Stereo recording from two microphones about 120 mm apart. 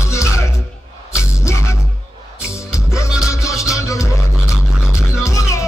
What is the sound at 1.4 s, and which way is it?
Music, 25° left (ahead or behind).